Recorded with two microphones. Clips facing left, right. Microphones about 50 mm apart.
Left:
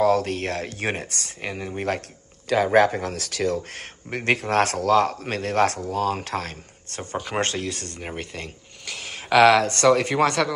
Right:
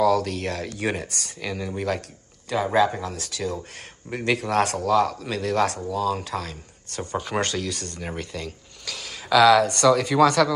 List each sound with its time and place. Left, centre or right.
0.0 s speech: left
1.4 s speech: left
2.5 s speech: left
7.3 s speech: left